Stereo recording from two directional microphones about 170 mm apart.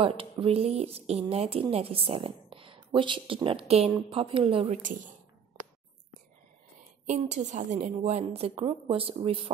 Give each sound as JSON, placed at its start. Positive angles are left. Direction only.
{"t": 0.0, "sound": "speech", "side_deg": -30}
{"t": 7.1, "sound": "speech", "side_deg": -45}